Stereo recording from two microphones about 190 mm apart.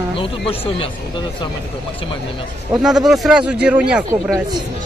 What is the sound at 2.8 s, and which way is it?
Speech, centre (ahead or behind).